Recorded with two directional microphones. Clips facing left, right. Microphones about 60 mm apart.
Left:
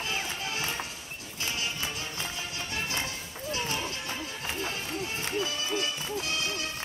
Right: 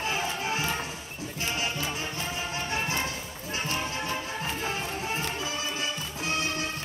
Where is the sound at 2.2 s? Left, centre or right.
Right.